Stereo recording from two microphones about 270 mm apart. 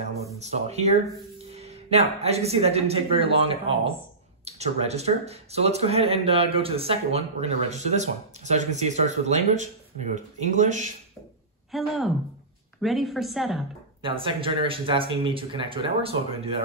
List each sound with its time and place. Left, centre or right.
0.4 s speech: right
11.7 s speech: centre
14.0 s speech: centre